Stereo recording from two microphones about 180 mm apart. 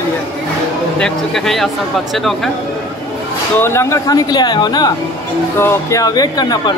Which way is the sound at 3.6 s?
15° left (ahead or behind).